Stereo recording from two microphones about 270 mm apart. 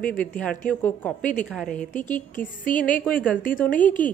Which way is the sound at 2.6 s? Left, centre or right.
Left.